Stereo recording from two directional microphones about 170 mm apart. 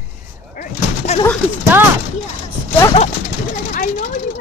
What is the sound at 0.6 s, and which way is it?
Speech, 40° left (ahead or behind).